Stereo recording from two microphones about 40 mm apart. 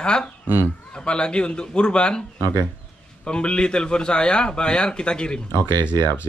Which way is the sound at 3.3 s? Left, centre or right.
Left.